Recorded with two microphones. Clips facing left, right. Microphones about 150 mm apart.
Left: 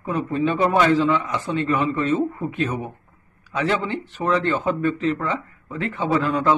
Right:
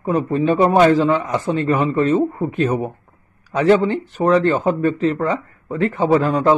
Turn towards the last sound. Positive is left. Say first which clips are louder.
# right 5 dB
turn(degrees=-40)  # may be behind; listen again after turning